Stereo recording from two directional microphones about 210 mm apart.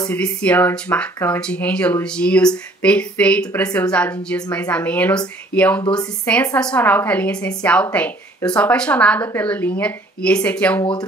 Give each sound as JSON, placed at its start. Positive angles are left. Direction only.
{"t": 0.0, "sound": "a woman's voice", "side_deg": 5}
{"t": 10.8, "sound": "speech", "side_deg": 20}